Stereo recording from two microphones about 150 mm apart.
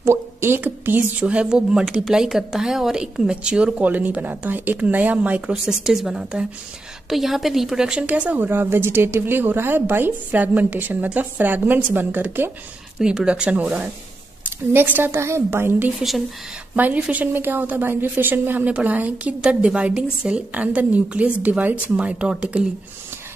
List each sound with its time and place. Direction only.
0.0 s speech: 15° right (ahead or behind)